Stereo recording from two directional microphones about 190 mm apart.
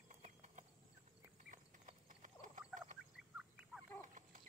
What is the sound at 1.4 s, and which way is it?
Clip-clop, 40° right (ahead or behind).